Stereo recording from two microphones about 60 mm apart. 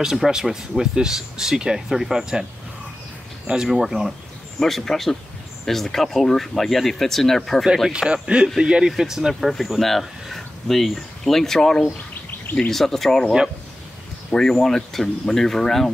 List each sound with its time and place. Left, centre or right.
0.0 s speech: centre
3.4 s speech: centre
4.6 s speech: centre
7.6 s speech: centre
7.9 s speech: centre
14.3 s speech: centre